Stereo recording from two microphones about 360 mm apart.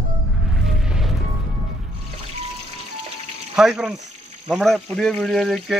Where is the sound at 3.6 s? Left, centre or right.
Centre.